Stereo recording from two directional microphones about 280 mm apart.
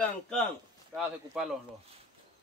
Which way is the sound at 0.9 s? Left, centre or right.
Centre.